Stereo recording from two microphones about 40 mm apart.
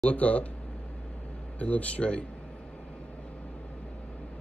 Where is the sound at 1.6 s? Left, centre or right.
Left.